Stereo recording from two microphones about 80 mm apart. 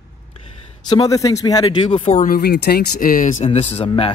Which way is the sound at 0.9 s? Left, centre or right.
Left.